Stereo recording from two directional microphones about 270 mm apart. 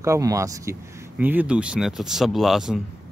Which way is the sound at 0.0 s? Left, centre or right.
Centre.